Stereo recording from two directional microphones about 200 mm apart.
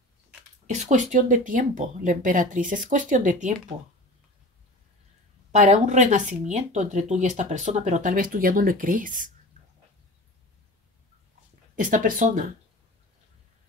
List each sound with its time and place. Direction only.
0.7 s speech: 35° right (ahead or behind)
5.5 s speech: 35° right (ahead or behind)
11.7 s speech: 40° right (ahead or behind)